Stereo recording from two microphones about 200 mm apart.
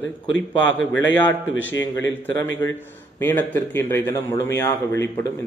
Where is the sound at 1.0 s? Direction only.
70° left (ahead or behind).